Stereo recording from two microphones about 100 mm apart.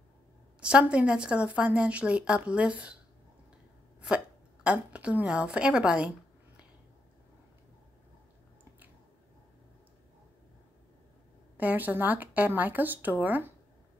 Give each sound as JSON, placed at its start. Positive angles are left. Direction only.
{"t": 0.6, "sound": "speech", "side_deg": -10}
{"t": 4.6, "sound": "a woman's voice", "side_deg": -10}
{"t": 11.5, "sound": "speech", "side_deg": -20}